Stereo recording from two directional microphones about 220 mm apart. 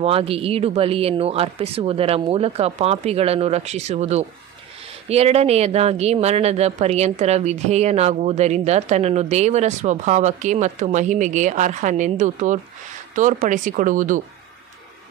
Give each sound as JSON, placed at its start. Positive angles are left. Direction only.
{"t": 0.0, "sound": "speech", "side_deg": -25}